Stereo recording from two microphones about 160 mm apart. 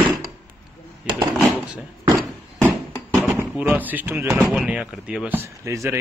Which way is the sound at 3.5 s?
10° right (ahead or behind).